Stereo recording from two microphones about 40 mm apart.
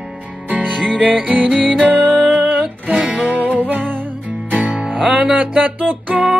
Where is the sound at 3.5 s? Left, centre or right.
Right.